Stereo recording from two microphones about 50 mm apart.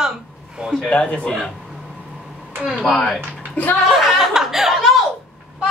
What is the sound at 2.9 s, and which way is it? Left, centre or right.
Speech, centre.